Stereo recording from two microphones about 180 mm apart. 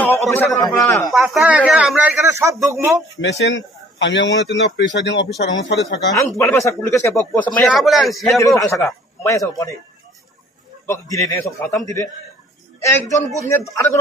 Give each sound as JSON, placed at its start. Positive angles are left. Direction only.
{"t": 0.0, "sound": "a man's voice", "side_deg": 10}
{"t": 1.1, "sound": "speech", "side_deg": 0}
{"t": 3.2, "sound": "a man's voice", "side_deg": 85}
{"t": 5.4, "sound": "speech", "side_deg": 70}
{"t": 6.1, "sound": "speech", "side_deg": 15}
{"t": 8.8, "sound": "a man's voice", "side_deg": 15}
{"t": 10.9, "sound": "speech", "side_deg": 15}